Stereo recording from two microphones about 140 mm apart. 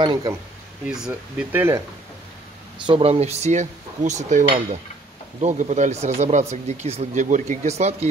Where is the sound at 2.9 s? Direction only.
45° right (ahead or behind).